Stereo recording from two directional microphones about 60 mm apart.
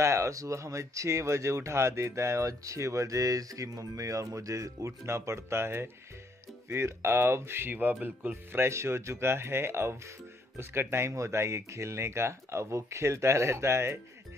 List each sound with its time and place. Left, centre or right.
0.0 s speech: right
7.7 s speech: right
8.6 s speech: right